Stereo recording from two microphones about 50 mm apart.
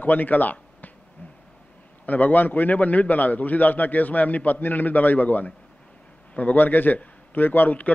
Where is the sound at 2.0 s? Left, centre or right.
Left.